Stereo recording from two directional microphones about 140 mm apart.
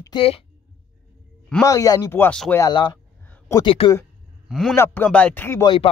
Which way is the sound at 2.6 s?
30° left (ahead or behind).